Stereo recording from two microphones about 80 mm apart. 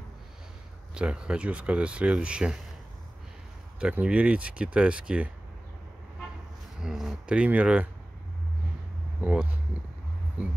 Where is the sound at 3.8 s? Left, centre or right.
Centre.